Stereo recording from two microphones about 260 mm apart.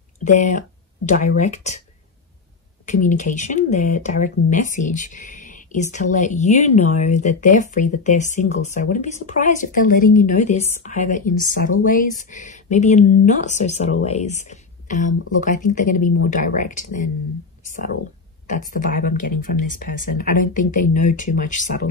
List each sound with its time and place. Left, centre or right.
0.2 s speech: left
2.8 s speech: left
18.5 s speech: left
20.8 s speech: left
21.1 s speech: left